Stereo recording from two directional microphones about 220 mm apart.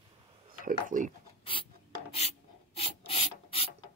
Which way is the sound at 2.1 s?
30° left (ahead or behind).